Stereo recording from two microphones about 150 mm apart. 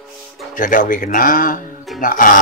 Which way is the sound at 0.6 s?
65° left (ahead or behind).